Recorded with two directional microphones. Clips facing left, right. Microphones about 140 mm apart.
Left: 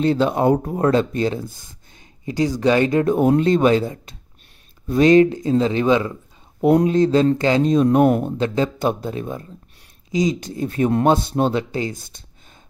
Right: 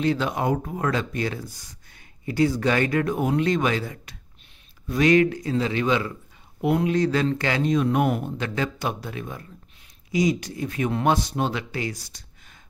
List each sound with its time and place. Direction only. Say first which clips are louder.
0.0 s speech: left 6 dB; 30° left (ahead or behind)
8.4 s speech: left 7 dB; 30° left (ahead or behind)